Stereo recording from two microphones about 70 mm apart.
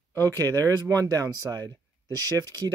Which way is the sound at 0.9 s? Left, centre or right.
Right.